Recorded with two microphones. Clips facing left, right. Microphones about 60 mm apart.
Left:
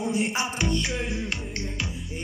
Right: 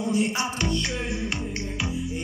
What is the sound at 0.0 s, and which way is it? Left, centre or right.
Music, left.